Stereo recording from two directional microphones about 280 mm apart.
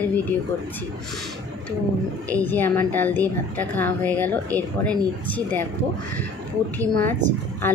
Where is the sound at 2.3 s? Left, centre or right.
Centre.